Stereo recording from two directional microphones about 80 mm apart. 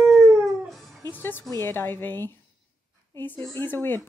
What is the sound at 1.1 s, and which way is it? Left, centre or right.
Music, left.